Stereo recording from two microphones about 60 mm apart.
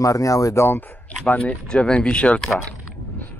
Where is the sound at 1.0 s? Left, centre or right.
Left.